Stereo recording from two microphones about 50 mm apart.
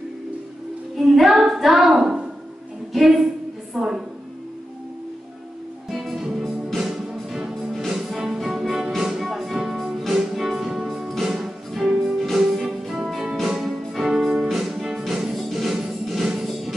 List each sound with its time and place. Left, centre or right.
0.9 s a woman's voice: centre
2.9 s a sound: centre
3.7 s a woman's voice: centre
5.9 s music: centre